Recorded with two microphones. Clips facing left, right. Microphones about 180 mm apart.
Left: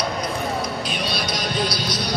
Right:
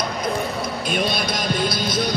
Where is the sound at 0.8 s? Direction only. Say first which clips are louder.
Right 4 dB; 50° right (ahead or behind).